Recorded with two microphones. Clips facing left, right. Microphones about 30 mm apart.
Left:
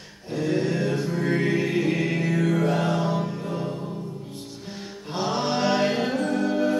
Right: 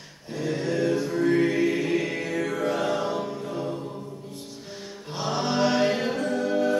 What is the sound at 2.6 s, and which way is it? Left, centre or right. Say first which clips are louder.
Music: left 2 dB; centre.